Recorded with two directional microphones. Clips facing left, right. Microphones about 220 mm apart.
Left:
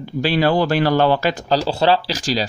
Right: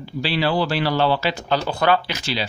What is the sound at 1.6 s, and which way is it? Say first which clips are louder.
Speech: left 2 dB; 30° left (ahead or behind).